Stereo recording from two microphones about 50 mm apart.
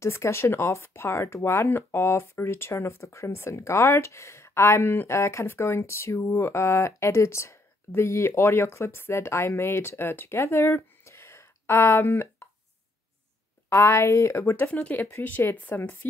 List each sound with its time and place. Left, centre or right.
0.0 s speech: left
8.3 s speech: left
11.1 s a sound: left
12.0 s speech: left
13.7 s a woman's voice: left
14.4 s speech: left
14.7 s speech: left
15.2 s speech: left